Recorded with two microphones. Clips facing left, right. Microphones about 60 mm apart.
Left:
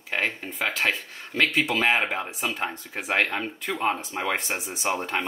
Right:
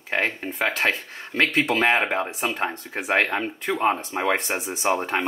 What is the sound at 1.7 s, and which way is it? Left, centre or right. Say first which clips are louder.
Speech: right 4 dB; right.